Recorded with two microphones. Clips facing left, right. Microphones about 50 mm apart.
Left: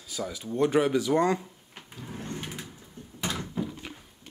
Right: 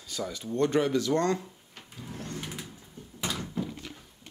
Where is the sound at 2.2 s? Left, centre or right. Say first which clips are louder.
Left 1 dB; left.